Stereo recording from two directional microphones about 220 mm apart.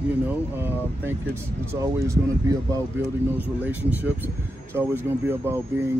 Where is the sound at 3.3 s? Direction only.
10° right (ahead or behind).